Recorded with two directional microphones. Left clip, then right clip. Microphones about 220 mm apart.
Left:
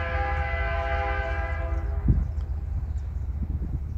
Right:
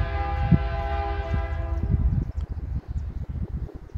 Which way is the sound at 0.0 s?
15° left (ahead or behind).